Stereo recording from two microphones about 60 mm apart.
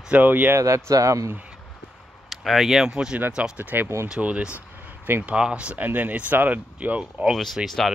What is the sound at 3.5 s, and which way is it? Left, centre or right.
Speech, right.